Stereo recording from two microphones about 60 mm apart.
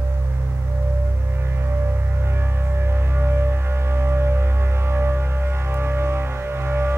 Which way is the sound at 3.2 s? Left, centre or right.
Right.